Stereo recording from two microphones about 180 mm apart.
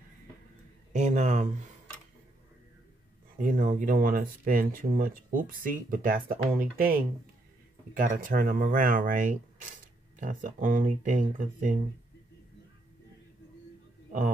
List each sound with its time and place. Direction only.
0.9 s speech: 40° right (ahead or behind)
3.3 s speech: 50° right (ahead or behind)